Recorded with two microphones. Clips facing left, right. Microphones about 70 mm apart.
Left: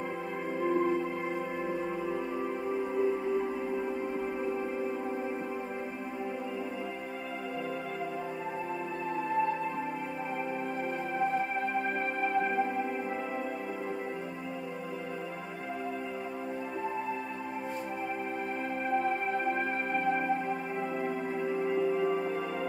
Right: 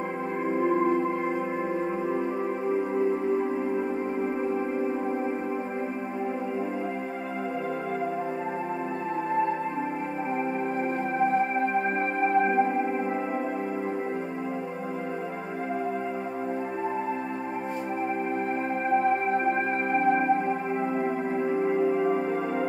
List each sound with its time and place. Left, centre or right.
0.5 s music: right
2.7 s music: right
11.1 s music: right
18.9 s music: right